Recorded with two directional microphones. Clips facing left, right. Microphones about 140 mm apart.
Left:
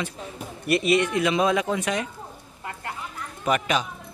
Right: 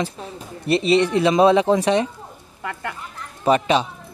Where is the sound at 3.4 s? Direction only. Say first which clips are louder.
Right 6 dB; 30° right (ahead or behind).